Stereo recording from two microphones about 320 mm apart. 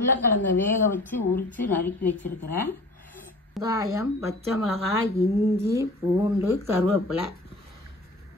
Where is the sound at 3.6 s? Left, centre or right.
Centre.